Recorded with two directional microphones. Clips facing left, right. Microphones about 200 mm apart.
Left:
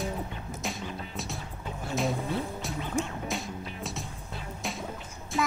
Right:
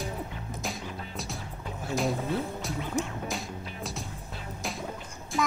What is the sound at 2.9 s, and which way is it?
Music, 25° left (ahead or behind).